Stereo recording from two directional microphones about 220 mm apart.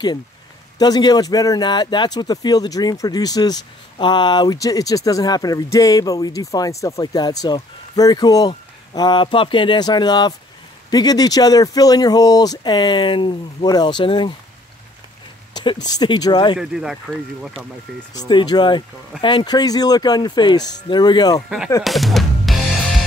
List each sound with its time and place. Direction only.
0.7 s speech: 15° left (ahead or behind)
15.5 s speech: 20° left (ahead or behind)
16.5 s speech: centre (ahead or behind)
18.1 s speech: 20° left (ahead or behind)
21.8 s music: centre (ahead or behind)